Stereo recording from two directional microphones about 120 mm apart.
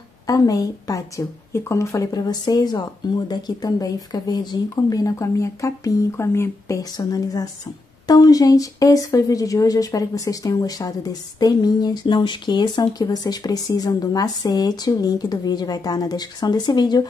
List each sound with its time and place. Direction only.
0.3 s speech: 30° left (ahead or behind)